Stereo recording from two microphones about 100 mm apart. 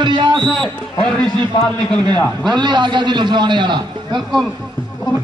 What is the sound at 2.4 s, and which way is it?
Speech, 45° right (ahead or behind).